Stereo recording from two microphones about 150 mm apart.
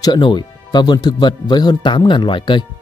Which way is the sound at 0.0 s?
30° left (ahead or behind).